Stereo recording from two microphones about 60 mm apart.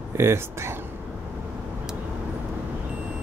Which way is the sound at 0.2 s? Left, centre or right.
Right.